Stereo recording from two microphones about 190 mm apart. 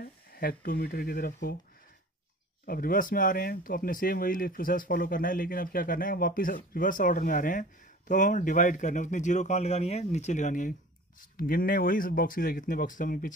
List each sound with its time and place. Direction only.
0.0 s speech: 50° left (ahead or behind)
2.6 s a man's voice: 50° left (ahead or behind)